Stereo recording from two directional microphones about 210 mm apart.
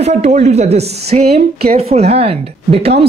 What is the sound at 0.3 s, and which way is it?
Speech, 30° right (ahead or behind).